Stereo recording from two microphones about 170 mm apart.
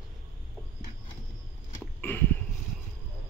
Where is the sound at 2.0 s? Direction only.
10° left (ahead or behind).